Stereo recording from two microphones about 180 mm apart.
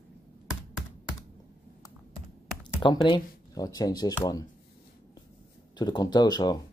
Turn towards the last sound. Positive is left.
turn(degrees=20)  # may be behind; listen again after turning